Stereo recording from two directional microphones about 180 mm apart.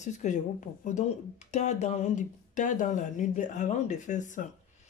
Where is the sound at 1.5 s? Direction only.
40° left (ahead or behind).